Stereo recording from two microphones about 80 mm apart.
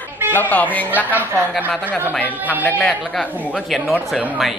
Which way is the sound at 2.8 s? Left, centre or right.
Centre.